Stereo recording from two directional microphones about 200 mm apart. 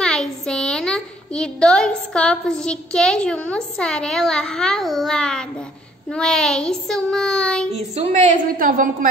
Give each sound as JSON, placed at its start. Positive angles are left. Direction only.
{"t": 0.0, "sound": "a woman's voice", "side_deg": 5}
{"t": 6.0, "sound": "child singing", "side_deg": 5}
{"t": 7.7, "sound": "a woman's voice", "side_deg": -30}
{"t": 8.5, "sound": "a woman's voice", "side_deg": -45}